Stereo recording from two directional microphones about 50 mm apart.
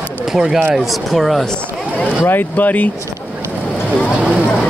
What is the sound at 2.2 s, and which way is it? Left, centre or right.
Speech, left.